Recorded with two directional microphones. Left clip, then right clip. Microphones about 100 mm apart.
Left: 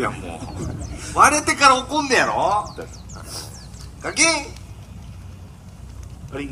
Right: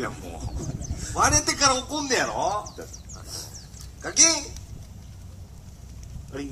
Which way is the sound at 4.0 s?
15° right (ahead or behind).